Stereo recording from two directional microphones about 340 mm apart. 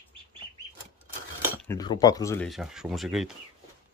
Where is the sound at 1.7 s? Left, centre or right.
Centre.